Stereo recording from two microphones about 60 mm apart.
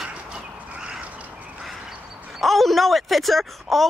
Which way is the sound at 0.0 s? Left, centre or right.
Centre.